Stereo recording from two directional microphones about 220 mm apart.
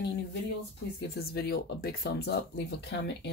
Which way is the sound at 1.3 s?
45° left (ahead or behind).